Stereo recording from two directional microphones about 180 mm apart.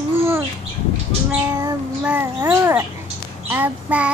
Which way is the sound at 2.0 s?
10° right (ahead or behind).